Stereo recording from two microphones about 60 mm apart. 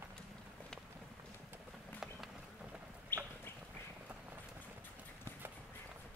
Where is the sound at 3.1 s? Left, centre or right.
Left.